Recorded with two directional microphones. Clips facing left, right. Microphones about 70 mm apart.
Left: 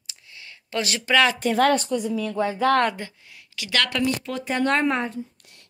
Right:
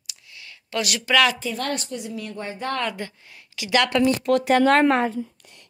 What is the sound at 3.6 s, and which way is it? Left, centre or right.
Speech, centre.